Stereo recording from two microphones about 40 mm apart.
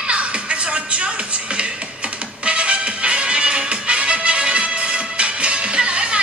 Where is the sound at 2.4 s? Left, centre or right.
Right.